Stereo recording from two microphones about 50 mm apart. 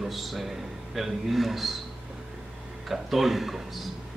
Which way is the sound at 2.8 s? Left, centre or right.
Centre.